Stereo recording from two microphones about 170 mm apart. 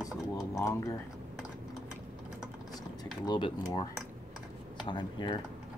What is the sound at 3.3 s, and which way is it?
Speech, 30° left (ahead or behind).